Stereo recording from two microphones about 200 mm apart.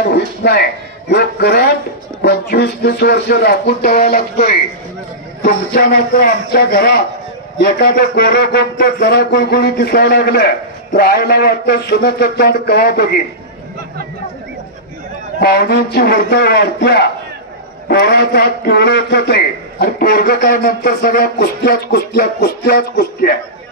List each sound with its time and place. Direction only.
0.0 s a man's voice: 55° left (ahead or behind)
15.4 s speech: 50° left (ahead or behind)